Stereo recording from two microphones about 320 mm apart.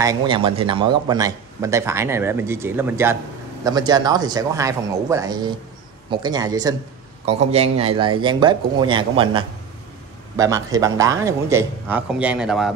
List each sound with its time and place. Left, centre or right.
0.0 s a man's voice: centre